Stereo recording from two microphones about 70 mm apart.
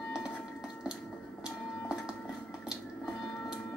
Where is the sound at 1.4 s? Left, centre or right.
Centre.